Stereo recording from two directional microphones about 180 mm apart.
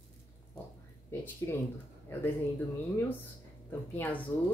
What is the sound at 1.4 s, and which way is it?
Speech, 15° left (ahead or behind).